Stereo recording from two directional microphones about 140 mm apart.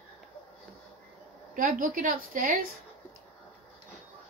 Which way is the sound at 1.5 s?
75° right (ahead or behind).